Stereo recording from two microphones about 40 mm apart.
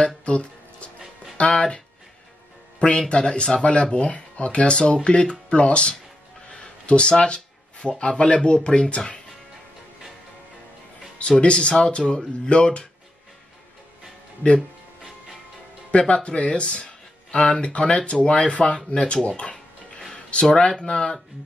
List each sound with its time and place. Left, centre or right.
0.0 s music: left
1.4 s speech: left
2.8 s speech: left
6.5 s a sound: left
8.0 s speech: left
11.1 s speech: left
15.9 s speech: left
19.5 s music: centre
20.2 s speech: left